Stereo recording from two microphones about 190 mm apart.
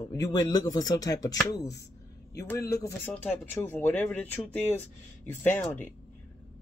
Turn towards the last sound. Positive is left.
turn(degrees=10)  # may be behind; listen again after turning